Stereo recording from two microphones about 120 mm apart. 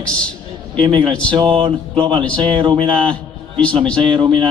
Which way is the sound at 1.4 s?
45° right (ahead or behind).